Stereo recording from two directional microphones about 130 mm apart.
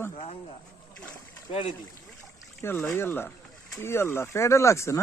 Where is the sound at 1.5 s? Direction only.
40° left (ahead or behind).